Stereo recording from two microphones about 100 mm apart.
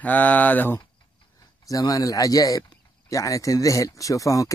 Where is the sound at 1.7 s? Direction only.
35° left (ahead or behind).